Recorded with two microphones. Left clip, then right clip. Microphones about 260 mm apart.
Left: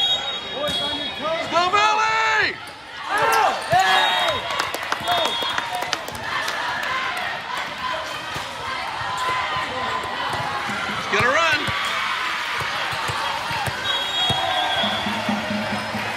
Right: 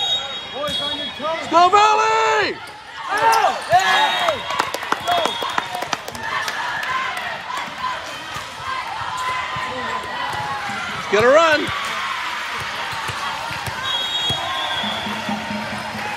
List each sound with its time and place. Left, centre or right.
1.5 s a sound: centre
3.3 s basketball bounce: centre
11.1 s speech: centre